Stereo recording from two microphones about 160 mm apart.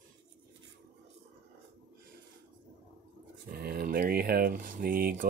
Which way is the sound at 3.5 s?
75° right (ahead or behind).